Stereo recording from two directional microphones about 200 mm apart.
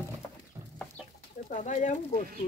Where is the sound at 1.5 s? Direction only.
40° left (ahead or behind).